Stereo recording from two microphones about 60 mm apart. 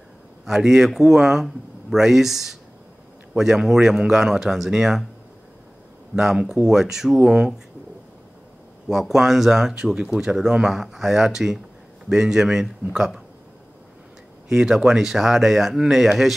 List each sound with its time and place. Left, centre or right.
0.5 s a man's voice: centre
6.1 s a man's voice: centre
8.8 s a man's voice: centre
14.5 s a man's voice: centre